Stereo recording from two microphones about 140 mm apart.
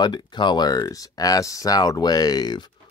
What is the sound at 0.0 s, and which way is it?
Speech, 30° left (ahead or behind).